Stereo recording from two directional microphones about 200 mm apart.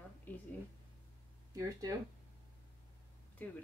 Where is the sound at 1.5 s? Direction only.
15° right (ahead or behind).